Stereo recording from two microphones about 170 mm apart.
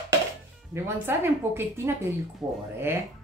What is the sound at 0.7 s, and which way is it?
Speech, 15° right (ahead or behind).